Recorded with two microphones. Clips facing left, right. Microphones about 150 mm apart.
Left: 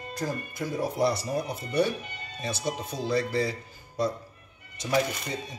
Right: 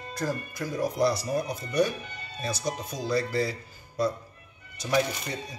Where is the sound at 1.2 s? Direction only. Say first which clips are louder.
Right 1 dB; 30° left (ahead or behind).